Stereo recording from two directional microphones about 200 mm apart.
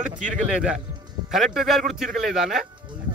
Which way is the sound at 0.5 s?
5° right (ahead or behind).